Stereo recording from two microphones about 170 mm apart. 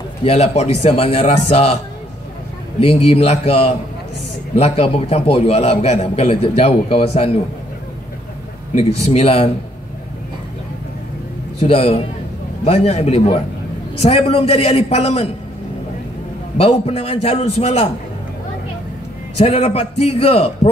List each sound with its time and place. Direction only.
0.2 s a man's voice: 40° left (ahead or behind)
2.8 s a man's voice: 35° left (ahead or behind)
9.0 s a man's voice: 35° left (ahead or behind)
11.6 s a man's voice: 35° left (ahead or behind)
16.5 s a man's voice: 35° left (ahead or behind)
19.3 s a man's voice: 35° left (ahead or behind)